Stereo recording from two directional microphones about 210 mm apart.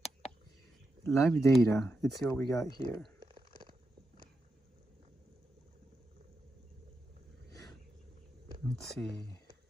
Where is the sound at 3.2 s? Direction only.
25° right (ahead or behind).